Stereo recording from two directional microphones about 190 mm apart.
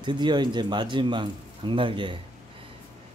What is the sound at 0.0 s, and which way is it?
Speech, 25° right (ahead or behind).